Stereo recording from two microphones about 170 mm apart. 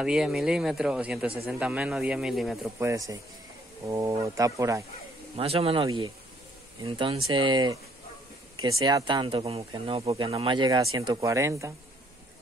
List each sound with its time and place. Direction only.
0.0 s speech: 5° right (ahead or behind)
2.8 s a man's voice: 15° right (ahead or behind)
5.3 s speech: 35° right (ahead or behind); by 11.7 s 15° right (ahead or behind)